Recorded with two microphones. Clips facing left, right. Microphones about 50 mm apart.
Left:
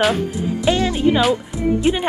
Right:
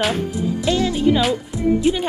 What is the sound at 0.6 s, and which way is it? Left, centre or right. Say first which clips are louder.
Music: left 2 dB; left.